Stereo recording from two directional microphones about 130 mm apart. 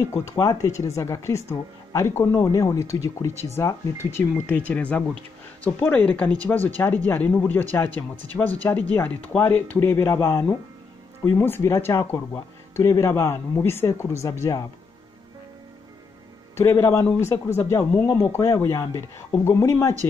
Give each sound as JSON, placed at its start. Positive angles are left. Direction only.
{"t": 0.1, "sound": "speech", "side_deg": 25}
{"t": 16.5, "sound": "speech", "side_deg": 20}